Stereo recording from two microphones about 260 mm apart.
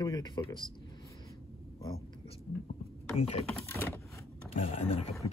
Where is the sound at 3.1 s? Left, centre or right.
Left.